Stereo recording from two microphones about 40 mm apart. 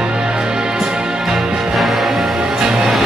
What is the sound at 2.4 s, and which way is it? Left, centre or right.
Music, centre.